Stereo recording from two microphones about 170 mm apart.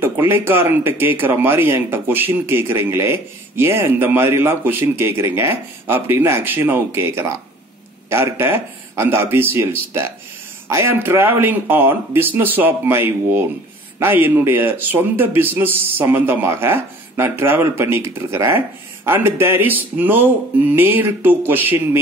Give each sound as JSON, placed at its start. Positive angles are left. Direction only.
{"t": 0.0, "sound": "speech", "side_deg": -15}
{"t": 10.7, "sound": "speech", "side_deg": -15}